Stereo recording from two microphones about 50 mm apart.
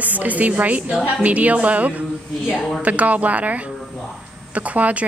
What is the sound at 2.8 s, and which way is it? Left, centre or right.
Speech, right.